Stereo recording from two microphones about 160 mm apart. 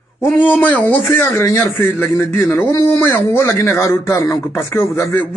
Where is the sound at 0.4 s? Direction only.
10° left (ahead or behind).